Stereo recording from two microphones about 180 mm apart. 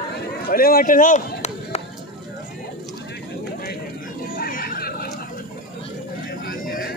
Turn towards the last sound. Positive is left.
turn(degrees=55)  # may be behind; listen again after turning